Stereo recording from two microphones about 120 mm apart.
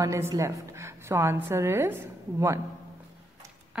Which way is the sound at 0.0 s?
25° right (ahead or behind).